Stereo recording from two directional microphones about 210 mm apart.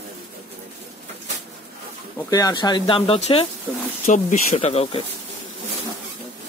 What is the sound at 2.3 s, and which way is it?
Speech, 20° left (ahead or behind).